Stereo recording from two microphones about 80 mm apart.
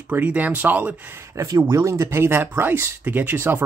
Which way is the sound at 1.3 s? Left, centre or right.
Right.